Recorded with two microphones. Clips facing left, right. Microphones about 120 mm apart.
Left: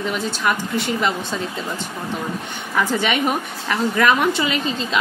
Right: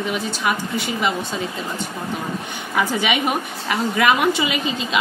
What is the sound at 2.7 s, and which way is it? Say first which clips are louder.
A woman's voice: even; 5° right (ahead or behind).